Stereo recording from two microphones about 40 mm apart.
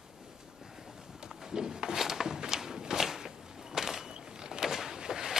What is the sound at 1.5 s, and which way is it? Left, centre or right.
Walk, centre.